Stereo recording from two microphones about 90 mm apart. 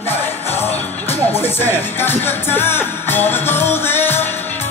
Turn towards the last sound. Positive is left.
turn(degrees=25)  # may be behind; listen again after turning